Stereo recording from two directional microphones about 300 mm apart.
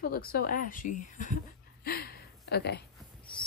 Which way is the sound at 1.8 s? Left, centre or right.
Left.